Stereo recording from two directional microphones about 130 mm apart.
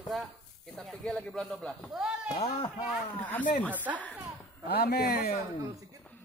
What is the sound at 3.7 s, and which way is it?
Speech, 10° right (ahead or behind).